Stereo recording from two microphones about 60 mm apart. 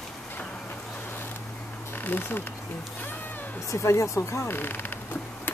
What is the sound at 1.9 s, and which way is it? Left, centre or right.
Speech, left.